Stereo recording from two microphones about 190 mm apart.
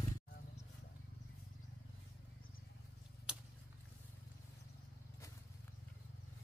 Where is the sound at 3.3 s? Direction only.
5° right (ahead or behind).